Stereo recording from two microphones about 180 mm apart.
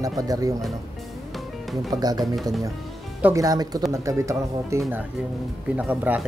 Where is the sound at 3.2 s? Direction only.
15° right (ahead or behind).